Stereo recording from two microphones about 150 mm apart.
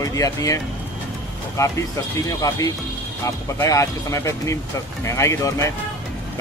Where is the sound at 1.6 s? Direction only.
20° left (ahead or behind).